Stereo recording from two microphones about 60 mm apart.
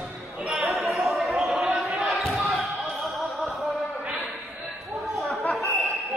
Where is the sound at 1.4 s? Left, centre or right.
Centre.